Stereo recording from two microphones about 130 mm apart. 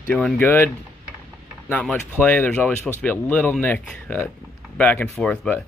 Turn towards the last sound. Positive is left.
turn(degrees=5)  # may be behind; listen again after turning